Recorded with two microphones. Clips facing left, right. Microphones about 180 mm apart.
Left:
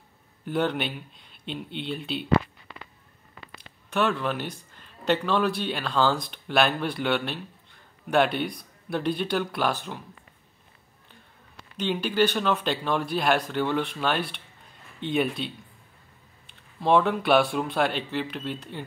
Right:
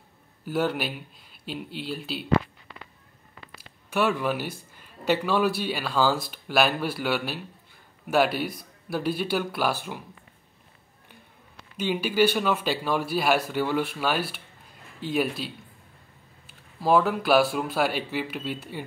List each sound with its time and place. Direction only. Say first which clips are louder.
0.5 s speech: even; 5° right (ahead or behind)
3.5 s speech: even; 10° right (ahead or behind)
11.7 s speech: right 1 dB; 10° right (ahead or behind)